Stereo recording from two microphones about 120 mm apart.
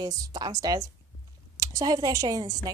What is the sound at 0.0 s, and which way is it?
Speech, 30° right (ahead or behind).